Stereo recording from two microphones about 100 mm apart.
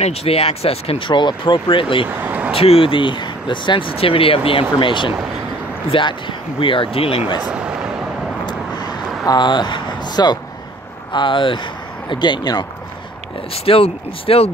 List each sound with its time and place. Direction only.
0.0 s speech: 90° left; by 2.0 s 60° left (ahead or behind)
2.0 s vehicle: 15° right (ahead or behind)
2.5 s speech: 75° left (ahead or behind)
7.4 s speech: 10° right (ahead or behind)
8.5 s a sound: 45° left (ahead or behind)
11.1 s speech: 55° left (ahead or behind)
13.7 s speech: 70° left (ahead or behind); by 14.5 s 85° left